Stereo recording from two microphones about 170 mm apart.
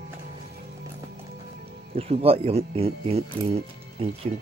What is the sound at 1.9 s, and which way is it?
Speech, 35° right (ahead or behind).